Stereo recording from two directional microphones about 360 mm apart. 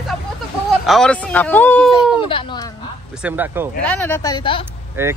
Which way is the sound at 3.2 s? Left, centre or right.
Centre.